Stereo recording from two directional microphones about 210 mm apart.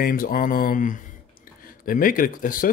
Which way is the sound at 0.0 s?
40° left (ahead or behind).